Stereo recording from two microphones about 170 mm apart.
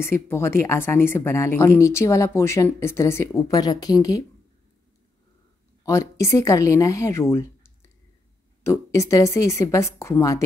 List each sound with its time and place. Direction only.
0.0 s speech: 15° left (ahead or behind)
5.9 s a woman's voice: 20° left (ahead or behind)